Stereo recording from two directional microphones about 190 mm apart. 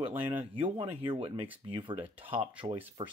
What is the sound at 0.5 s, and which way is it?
Speech, 30° right (ahead or behind).